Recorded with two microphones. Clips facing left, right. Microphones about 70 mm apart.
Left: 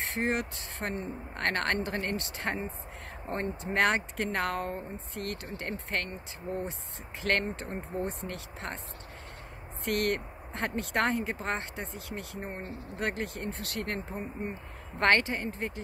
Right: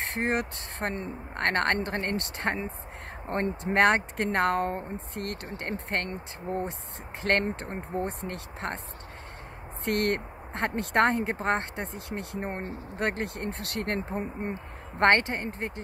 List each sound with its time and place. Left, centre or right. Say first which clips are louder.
0.0 s speech: right 2 dB; right
7.2 s speech: right 3 dB; right
9.8 s speech: right 2 dB; right
14.2 s speech: right 3 dB; right
15.0 s speech: right 3 dB; right